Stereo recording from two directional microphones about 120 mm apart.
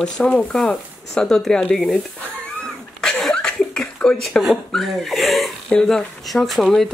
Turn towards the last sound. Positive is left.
turn(degrees=0)  # may be behind; listen again after turning